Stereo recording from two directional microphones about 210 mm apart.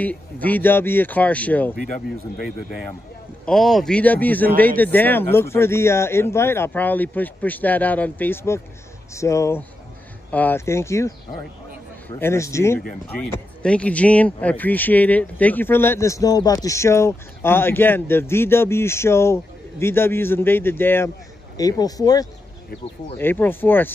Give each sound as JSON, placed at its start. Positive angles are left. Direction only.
{"t": 0.0, "sound": "speech", "side_deg": 5}
{"t": 3.4, "sound": "speech", "side_deg": 0}
{"t": 12.2, "sound": "speech", "side_deg": 15}